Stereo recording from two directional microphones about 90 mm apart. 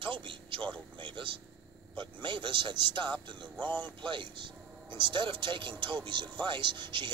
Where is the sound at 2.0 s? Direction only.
65° right (ahead or behind).